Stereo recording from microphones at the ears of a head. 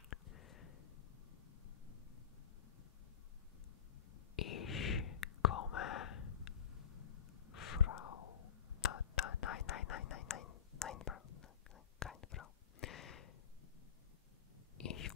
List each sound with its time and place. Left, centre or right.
0.1 s a sound: left
4.4 s whispering: left
14.8 s biting: left